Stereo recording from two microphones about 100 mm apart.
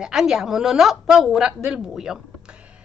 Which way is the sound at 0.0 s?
5° right (ahead or behind).